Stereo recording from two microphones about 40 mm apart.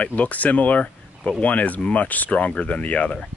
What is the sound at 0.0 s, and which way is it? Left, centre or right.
Speech, left.